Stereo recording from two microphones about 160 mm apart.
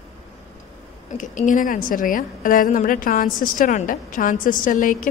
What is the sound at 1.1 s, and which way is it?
A woman's voice, 50° left (ahead or behind).